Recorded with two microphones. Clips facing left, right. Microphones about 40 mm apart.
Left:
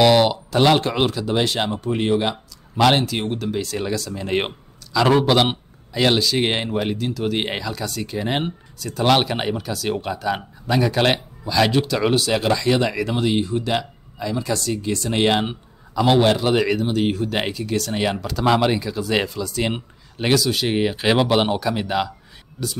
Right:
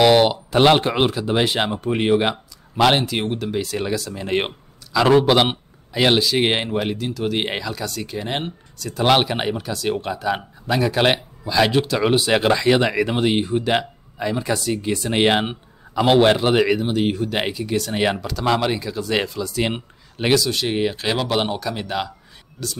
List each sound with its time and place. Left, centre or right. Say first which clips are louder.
0.1 s speech: right 1 dB; centre
2.8 s speech: even; centre
8.9 s speech: right 1 dB; centre
12.3 s speech: right 3 dB; right
14.5 s speech: right 1 dB; centre
16.6 s speech: right 1 dB; centre
18.2 s speech: left 2 dB; centre
20.4 s speech: left 1 dB; centre